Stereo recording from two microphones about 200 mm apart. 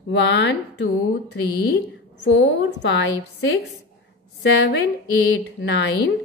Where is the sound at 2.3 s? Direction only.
60° left (ahead or behind).